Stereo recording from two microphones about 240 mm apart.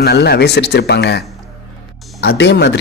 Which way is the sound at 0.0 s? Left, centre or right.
Left.